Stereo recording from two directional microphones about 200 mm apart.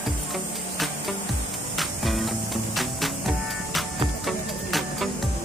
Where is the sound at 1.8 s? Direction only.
Centre (ahead or behind).